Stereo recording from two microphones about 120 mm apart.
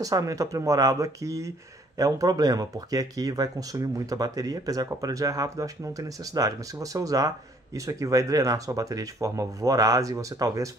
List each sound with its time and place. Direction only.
0.0 s speech: 30° right (ahead or behind)